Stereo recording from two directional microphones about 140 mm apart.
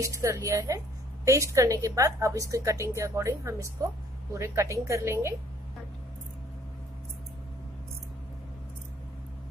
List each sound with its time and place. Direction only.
0.0 s a woman's voice: 20° right (ahead or behind)